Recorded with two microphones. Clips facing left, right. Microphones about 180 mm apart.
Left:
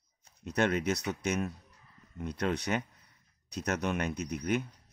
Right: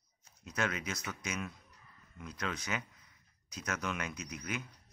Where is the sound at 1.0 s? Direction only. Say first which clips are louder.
Left 8 dB; 70° left (ahead or behind).